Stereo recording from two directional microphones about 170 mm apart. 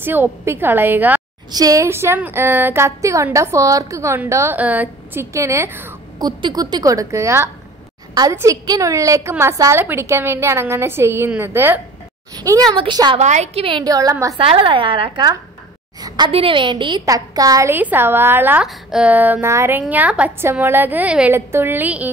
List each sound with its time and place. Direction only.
0.0 s a woman's voice: 10° right (ahead or behind)
12.4 s a woman's voice: 25° right (ahead or behind)
13.2 s a woman's voice: 40° right (ahead or behind); by 14.1 s 20° right (ahead or behind)
14.4 s a woman's voice: 35° right (ahead or behind); by 22.1 s 10° right (ahead or behind)